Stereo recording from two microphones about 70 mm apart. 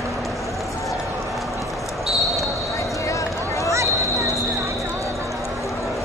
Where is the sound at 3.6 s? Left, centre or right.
Right.